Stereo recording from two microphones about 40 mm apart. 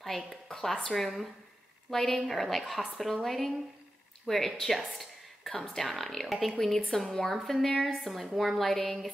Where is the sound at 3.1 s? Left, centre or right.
Centre.